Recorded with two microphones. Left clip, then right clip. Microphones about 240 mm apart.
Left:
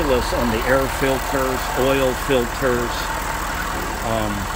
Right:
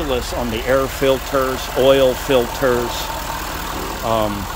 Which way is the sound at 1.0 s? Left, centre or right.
Centre.